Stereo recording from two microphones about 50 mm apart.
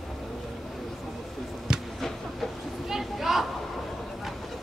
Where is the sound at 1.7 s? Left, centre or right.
Centre.